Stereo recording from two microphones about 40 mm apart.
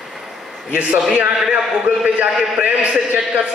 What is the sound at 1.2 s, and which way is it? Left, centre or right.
Speech, right.